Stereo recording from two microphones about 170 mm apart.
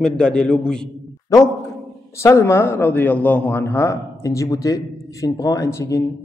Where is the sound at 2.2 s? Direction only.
15° left (ahead or behind).